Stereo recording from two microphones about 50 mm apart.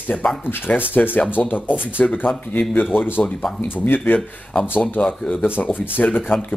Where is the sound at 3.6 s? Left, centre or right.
Left.